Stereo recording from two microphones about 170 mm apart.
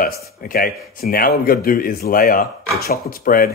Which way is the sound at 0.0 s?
60° left (ahead or behind).